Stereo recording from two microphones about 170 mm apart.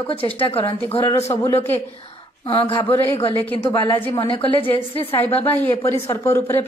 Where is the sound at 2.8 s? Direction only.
15° left (ahead or behind).